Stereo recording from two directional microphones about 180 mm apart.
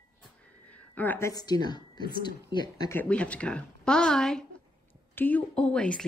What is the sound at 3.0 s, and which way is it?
Speech, 5° left (ahead or behind).